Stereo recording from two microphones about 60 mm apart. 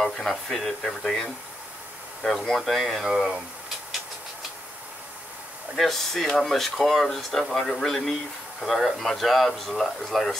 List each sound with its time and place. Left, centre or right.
0.0 s speech: centre
5.8 s speech: centre